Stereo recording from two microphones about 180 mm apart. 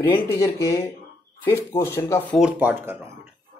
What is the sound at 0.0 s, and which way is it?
Speech, 15° left (ahead or behind).